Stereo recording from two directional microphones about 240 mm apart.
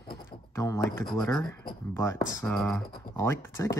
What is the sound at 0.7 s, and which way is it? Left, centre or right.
Speech, centre.